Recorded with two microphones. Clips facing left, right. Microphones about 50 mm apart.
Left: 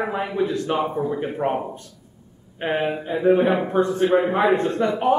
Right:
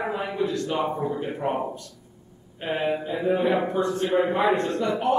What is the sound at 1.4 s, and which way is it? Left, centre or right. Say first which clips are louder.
A man's voice: left 2 dB; left.